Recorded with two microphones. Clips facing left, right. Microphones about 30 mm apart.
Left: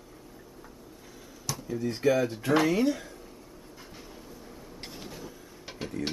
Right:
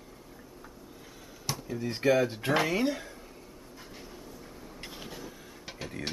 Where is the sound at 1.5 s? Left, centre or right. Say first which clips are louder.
Even; centre.